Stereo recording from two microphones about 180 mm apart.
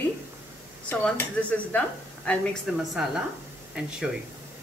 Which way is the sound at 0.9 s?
10° left (ahead or behind).